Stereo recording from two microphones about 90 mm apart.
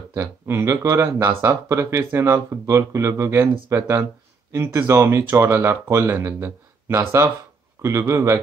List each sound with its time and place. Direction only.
0.1 s speech: 30° right (ahead or behind)